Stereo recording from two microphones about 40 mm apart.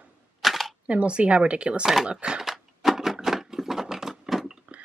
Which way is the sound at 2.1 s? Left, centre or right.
Right.